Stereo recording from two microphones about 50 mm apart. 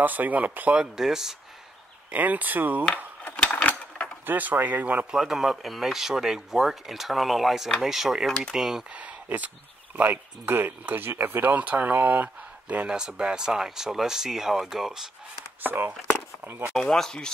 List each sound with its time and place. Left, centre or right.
0.0 s speech: right
0.9 s speech: centre
2.0 s speech: right
3.4 s mechanisms: left
4.3 s speech: right
5.1 s speech: centre
8.3 s speech: centre
8.5 s speech: centre
8.9 s speech: right
11.5 s speech: right
12.8 s speech: centre
15.6 s speech: right
16.7 s speech: centre